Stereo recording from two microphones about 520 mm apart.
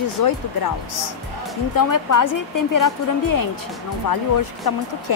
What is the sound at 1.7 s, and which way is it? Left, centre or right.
A woman's voice, left.